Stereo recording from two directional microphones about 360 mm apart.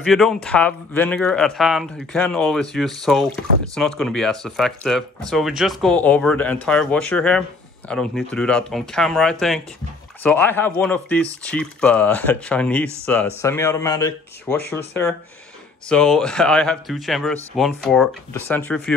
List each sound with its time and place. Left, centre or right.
0.0 s speech: centre